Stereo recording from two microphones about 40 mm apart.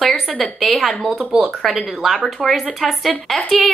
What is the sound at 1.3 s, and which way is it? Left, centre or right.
Speech, centre.